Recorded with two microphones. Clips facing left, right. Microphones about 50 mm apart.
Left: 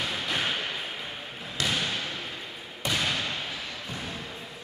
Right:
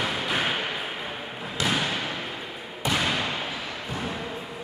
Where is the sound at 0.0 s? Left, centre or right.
Centre.